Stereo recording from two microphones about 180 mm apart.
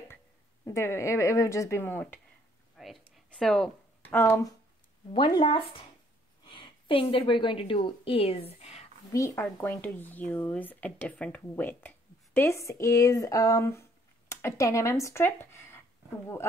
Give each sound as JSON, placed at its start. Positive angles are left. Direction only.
{"t": 0.7, "sound": "speech", "side_deg": 15}
{"t": 2.8, "sound": "a sound", "side_deg": 0}
{"t": 4.2, "sound": "speech", "side_deg": 15}
{"t": 5.1, "sound": "a woman's voice", "side_deg": 25}
{"t": 9.1, "sound": "speech", "side_deg": 15}